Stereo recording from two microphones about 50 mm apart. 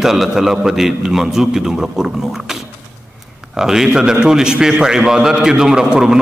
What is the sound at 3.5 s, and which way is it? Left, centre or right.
A man's voice, centre.